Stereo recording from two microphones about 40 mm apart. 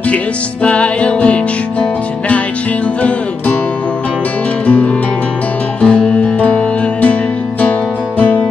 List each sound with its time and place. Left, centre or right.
0.1 s music: left
4.6 s music: left
5.8 s music: left